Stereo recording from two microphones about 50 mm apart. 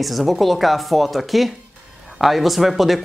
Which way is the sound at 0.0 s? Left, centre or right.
Centre.